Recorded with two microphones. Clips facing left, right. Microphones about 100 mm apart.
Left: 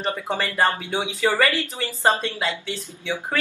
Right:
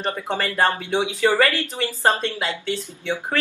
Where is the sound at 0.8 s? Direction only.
25° right (ahead or behind).